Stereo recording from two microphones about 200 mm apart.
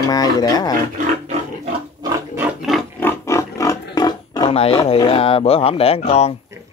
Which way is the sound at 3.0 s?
10° left (ahead or behind).